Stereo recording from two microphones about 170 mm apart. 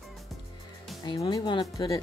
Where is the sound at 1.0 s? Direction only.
25° left (ahead or behind).